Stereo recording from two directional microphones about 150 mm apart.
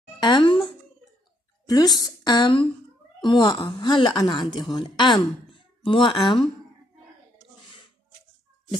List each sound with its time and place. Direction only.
0.2 s a woman's voice: 30° left (ahead or behind)
1.7 s a woman's voice: 25° left (ahead or behind)
4.4 s a woman's voice: centre (ahead or behind)
4.7 s a woman's voice: 30° left (ahead or behind)